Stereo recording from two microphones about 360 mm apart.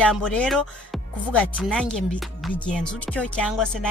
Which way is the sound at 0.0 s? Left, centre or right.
Centre.